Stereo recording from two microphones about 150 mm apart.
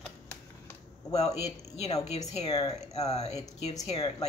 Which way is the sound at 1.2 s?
45° left (ahead or behind).